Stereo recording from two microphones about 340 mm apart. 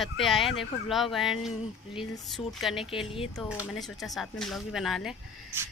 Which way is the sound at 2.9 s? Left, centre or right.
Centre.